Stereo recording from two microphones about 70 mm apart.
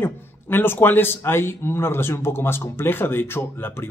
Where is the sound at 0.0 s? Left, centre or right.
Left.